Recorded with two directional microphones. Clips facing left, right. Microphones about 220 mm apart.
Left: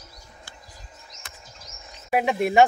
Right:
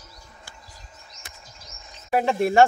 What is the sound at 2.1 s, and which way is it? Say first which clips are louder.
Speech: right 1 dB; 10° left (ahead or behind).